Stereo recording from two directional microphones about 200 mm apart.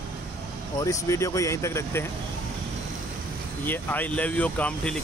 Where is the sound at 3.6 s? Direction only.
10° left (ahead or behind).